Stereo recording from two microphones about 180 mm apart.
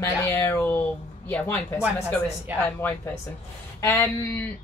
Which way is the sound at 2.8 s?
10° left (ahead or behind).